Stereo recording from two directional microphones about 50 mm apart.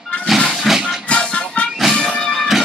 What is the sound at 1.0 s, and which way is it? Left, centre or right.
Music, left.